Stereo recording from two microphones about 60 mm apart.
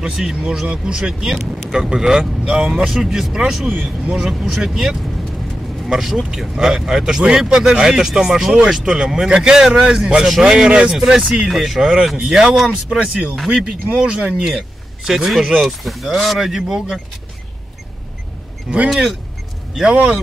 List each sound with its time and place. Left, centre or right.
0.0 s speech: centre
10.2 s speech: centre
13.5 s speech: centre
15.0 s speech: centre
19.7 s speech: centre